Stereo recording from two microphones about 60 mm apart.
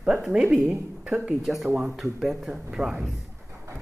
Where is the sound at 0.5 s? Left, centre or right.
Centre.